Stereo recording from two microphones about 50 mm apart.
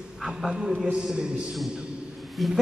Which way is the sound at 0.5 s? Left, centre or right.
Centre.